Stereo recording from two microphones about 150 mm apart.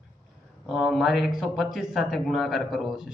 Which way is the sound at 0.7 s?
5° right (ahead or behind).